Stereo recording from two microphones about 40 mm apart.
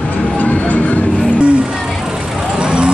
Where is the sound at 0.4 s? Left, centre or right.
Left.